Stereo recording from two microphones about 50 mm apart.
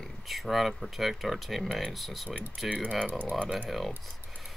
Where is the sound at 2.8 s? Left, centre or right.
Left.